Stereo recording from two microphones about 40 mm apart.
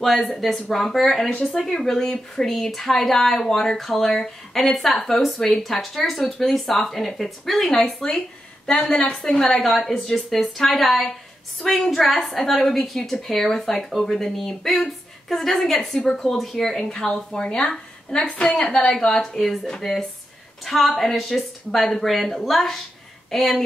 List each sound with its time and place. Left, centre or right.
0.0 s a woman's voice: centre